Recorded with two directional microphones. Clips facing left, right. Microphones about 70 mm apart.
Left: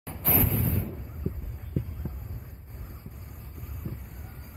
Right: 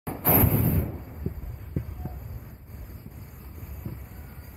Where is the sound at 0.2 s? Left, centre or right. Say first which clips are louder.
Right 5 dB; right.